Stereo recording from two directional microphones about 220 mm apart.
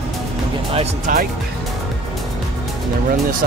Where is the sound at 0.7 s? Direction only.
30° right (ahead or behind).